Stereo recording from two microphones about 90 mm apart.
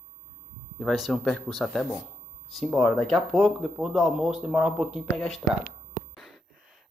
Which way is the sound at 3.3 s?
5° right (ahead or behind).